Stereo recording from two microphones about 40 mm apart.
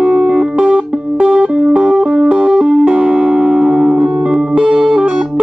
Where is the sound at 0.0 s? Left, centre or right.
Right.